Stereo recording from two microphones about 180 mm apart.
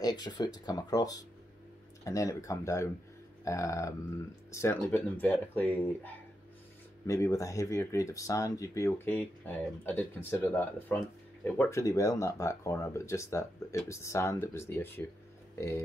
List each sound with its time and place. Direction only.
0.0 s speech: 20° left (ahead or behind)
7.1 s speech: 15° left (ahead or behind)